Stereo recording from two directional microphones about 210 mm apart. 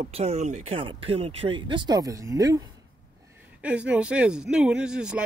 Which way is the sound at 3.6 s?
5° right (ahead or behind).